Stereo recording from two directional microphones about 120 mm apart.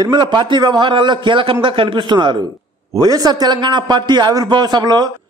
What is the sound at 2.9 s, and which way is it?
A man's voice, 30° right (ahead or behind).